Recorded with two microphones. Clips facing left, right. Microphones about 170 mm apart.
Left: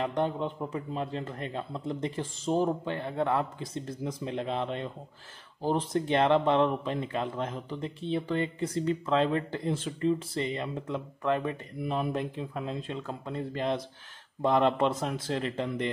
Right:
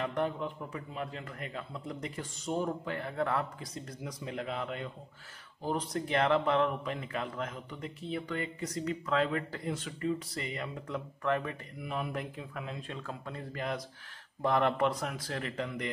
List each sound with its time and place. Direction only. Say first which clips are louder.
0.0 s speech: left 4 dB; 25° left (ahead or behind)